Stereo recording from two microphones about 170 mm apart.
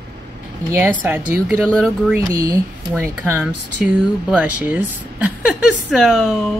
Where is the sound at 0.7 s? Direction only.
10° right (ahead or behind).